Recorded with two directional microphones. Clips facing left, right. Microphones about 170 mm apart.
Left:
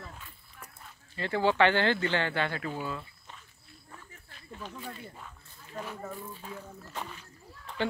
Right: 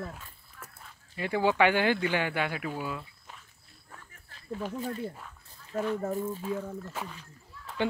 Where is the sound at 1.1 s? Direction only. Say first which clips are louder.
Right 1 dB; 10° right (ahead or behind).